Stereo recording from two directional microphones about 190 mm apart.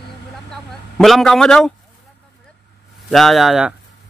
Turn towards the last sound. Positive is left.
turn(degrees=0)  # may be behind; listen again after turning